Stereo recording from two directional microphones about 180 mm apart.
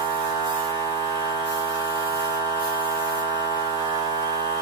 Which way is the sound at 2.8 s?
20° right (ahead or behind).